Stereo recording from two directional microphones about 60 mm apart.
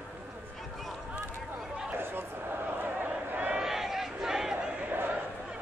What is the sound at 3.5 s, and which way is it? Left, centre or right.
Crowd, centre.